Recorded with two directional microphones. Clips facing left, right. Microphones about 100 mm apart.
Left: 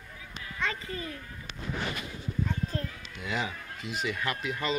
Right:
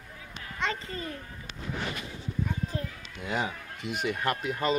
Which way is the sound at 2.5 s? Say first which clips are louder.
Even; 15° right (ahead or behind).